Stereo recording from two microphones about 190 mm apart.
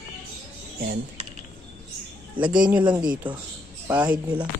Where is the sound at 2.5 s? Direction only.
5° right (ahead or behind).